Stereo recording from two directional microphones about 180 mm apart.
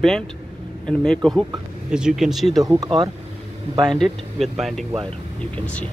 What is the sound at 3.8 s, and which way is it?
Speech, centre (ahead or behind).